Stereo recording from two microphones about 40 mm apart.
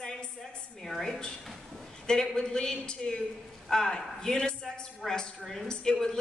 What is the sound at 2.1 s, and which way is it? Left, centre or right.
A woman's voice, centre.